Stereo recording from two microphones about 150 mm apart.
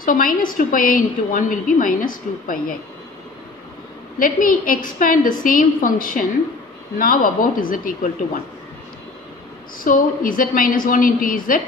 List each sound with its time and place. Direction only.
0.0 s a woman's voice: 65° left (ahead or behind)
4.2 s a woman's voice: 65° left (ahead or behind)
9.8 s a woman's voice: 65° left (ahead or behind)